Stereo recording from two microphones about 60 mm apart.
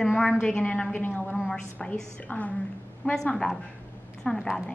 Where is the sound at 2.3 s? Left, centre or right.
Left.